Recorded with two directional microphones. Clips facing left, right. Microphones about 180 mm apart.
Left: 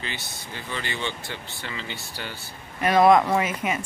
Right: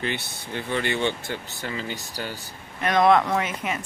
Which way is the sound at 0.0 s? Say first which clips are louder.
Right 6 dB; 60° right (ahead or behind).